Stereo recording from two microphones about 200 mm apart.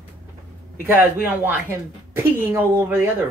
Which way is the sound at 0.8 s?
10° right (ahead or behind).